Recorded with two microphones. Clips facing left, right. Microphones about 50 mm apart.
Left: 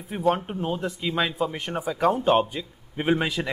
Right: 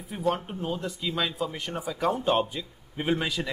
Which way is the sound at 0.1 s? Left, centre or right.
Left.